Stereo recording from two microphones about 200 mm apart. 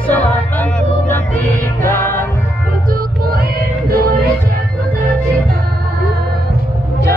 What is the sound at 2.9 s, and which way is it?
Music, 50° right (ahead or behind).